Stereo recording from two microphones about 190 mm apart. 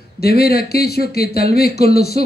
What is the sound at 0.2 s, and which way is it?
Speech, 55° left (ahead or behind).